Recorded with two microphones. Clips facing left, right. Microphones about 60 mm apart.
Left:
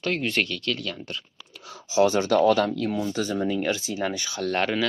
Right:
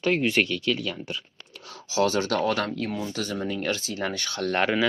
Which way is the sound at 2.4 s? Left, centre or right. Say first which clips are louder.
Left 5 dB; right.